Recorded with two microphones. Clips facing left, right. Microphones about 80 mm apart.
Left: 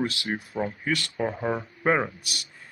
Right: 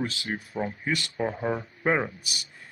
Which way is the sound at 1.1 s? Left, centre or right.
Centre.